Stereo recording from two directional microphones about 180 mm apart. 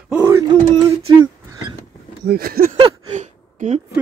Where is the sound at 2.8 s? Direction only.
35° right (ahead or behind).